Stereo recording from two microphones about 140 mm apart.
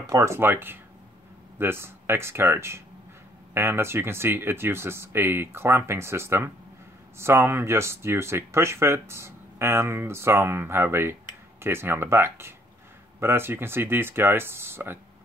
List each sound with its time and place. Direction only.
0.0 s speech: 25° right (ahead or behind)